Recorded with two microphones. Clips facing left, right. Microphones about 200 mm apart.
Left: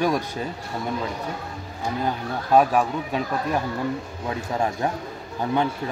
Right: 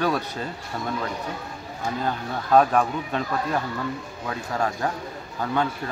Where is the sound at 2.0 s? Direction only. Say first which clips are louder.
Left 1 dB; 10° left (ahead or behind).